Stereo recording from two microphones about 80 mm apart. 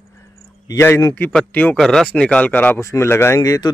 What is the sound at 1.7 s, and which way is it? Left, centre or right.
Speech, centre.